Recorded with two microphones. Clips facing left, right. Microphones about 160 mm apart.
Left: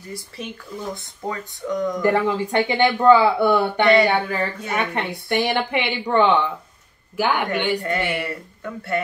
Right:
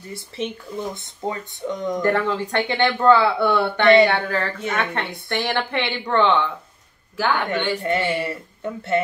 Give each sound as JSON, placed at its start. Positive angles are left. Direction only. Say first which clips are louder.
{"t": 0.9, "sound": "speech", "louder": "right 1 dB", "side_deg": -25}
{"t": 2.0, "sound": "speech", "louder": "left 2 dB", "side_deg": 10}
{"t": 7.8, "sound": "speech", "louder": "right 2 dB", "side_deg": -20}